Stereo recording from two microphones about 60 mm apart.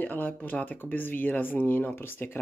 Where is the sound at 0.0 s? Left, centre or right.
Left.